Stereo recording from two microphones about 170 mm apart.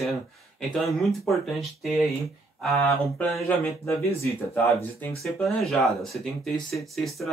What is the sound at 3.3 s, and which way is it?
Speech, 15° left (ahead or behind).